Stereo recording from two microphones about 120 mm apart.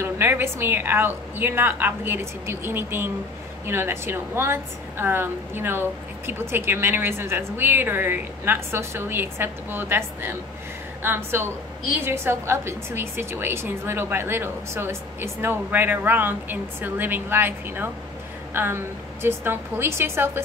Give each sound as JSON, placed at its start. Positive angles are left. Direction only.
{"t": 0.0, "sound": "a woman's voice", "side_deg": -20}